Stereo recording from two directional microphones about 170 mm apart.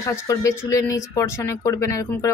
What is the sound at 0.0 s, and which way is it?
Speech, 20° left (ahead or behind).